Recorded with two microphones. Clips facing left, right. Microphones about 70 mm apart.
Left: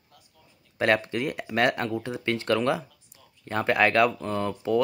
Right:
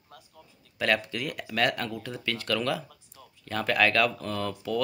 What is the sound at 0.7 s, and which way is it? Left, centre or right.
Speech, left.